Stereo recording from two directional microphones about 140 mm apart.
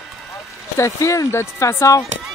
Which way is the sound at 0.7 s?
20° left (ahead or behind).